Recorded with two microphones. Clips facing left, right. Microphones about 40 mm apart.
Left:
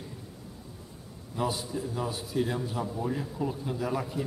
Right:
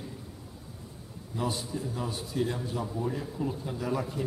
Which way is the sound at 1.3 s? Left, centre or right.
Centre.